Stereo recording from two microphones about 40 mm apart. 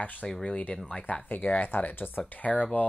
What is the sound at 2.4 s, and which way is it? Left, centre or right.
Speech, left.